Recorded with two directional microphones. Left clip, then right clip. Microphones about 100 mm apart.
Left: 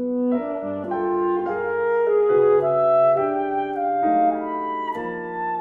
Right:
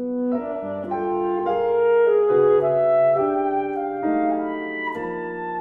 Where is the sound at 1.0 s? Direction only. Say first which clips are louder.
Left 1 dB; 30° right (ahead or behind).